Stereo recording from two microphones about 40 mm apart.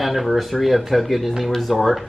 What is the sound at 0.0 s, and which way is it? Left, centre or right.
Speech, centre.